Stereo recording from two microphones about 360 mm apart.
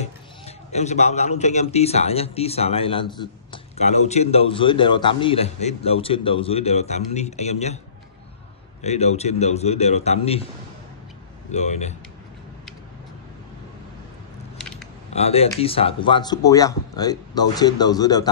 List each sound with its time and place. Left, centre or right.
0.0 s a sound: centre
1.4 s a man's voice: centre
8.8 s a man's voice: centre
11.5 s speech: centre
15.1 s a man's voice: centre